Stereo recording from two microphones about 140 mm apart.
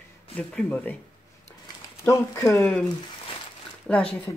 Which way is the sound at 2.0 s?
20° left (ahead or behind).